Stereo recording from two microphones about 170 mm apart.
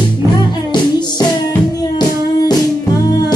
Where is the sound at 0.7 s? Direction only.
25° left (ahead or behind).